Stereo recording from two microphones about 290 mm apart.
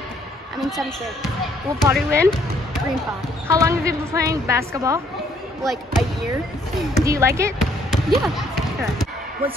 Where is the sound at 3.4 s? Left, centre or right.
Centre.